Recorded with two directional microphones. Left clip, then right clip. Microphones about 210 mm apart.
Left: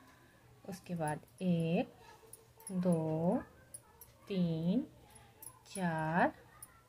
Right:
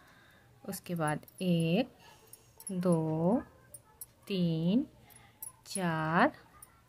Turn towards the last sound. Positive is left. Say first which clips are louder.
# right 4 dB
turn(degrees=-35)  # may be behind; listen again after turning